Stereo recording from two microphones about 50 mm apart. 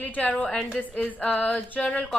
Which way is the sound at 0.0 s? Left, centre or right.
Left.